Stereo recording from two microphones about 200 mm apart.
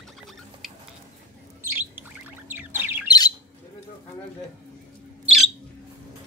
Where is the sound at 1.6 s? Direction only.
10° right (ahead or behind).